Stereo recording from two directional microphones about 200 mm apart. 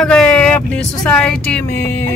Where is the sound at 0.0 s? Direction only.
5° left (ahead or behind).